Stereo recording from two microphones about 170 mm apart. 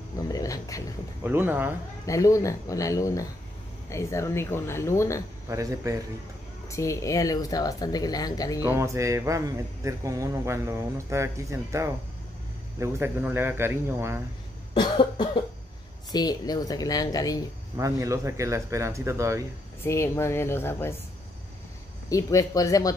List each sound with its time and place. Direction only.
0.2 s a sound: 20° left (ahead or behind)
1.2 s speech: 10° right (ahead or behind)
2.0 s speech: 20° left (ahead or behind)
5.5 s a man's voice: 20° right (ahead or behind)
6.7 s speech: 20° left (ahead or behind)
8.7 s speech: 15° right (ahead or behind)
14.7 s cough: 25° left (ahead or behind)
16.1 s speech: 25° left (ahead or behind)
17.7 s speech: 20° right (ahead or behind)
19.8 s speech: 15° left (ahead or behind)
22.1 s speech: 20° left (ahead or behind)